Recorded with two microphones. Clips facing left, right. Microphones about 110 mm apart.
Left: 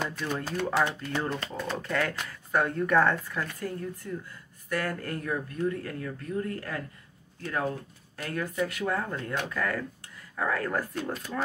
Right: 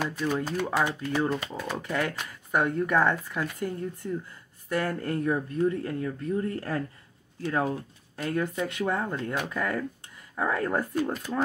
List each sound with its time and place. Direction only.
0.0 s speech: 5° right (ahead or behind); by 10.9 s 25° right (ahead or behind)